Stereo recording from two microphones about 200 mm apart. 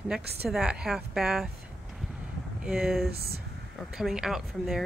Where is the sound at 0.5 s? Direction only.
5° right (ahead or behind).